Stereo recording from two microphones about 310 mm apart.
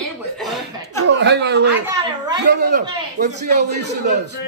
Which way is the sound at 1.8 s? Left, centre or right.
Centre.